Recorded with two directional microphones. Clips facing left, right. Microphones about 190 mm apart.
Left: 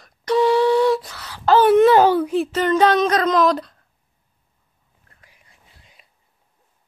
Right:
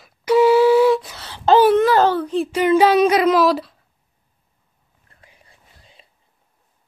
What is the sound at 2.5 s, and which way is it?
Speech, 10° right (ahead or behind).